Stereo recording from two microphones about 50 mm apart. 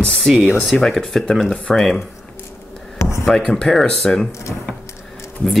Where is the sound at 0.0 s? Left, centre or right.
Centre.